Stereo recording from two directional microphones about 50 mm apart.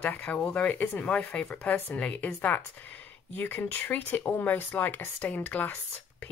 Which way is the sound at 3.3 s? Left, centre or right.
Left.